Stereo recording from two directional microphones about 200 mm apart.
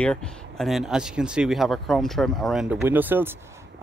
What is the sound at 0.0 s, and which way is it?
Speech, 5° left (ahead or behind).